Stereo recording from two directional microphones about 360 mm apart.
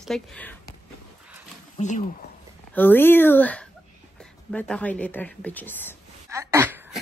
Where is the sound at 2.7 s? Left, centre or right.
Centre.